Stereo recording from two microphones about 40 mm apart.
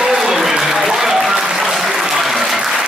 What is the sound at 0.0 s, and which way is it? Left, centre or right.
Applause, centre.